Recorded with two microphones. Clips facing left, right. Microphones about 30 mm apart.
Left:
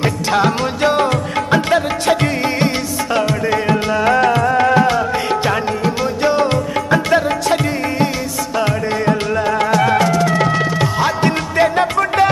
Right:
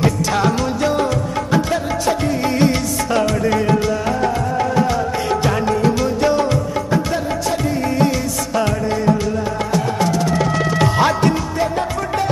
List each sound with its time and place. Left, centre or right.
0.0 s music: left
3.1 s music: left
3.8 s music: left
5.3 s music: left
6.5 s music: left
8.8 s music: left
10.8 s music: centre
11.5 s music: left